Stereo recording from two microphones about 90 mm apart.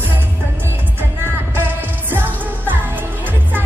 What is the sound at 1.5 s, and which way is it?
Music, 25° right (ahead or behind).